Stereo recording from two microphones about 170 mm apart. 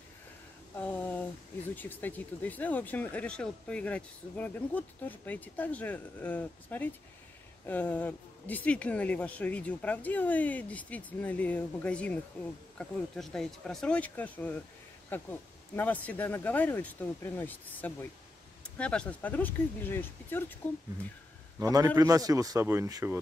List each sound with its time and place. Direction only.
0.7 s a sound: 10° left (ahead or behind)
1.8 s speech: 10° left (ahead or behind)
21.5 s a man's voice: 20° right (ahead or behind)